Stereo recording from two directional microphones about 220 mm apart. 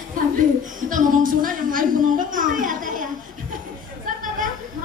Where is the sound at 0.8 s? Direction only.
40° right (ahead or behind).